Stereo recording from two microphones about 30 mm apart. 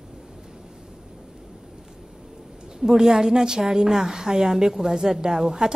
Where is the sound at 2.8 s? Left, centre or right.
Centre.